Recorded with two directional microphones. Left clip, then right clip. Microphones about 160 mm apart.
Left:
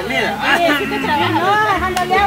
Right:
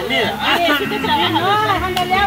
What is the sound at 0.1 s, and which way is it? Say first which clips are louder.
Speech: left 1 dB; 15° left (ahead or behind).